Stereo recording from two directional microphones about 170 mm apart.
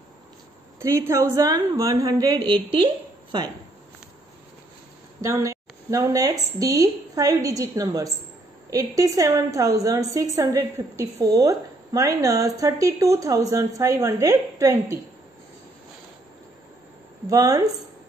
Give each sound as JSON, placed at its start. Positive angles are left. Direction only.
{"t": 0.7, "sound": "a woman's voice", "side_deg": -15}
{"t": 5.2, "sound": "a woman's voice", "side_deg": -20}
{"t": 17.3, "sound": "a woman's voice", "side_deg": -20}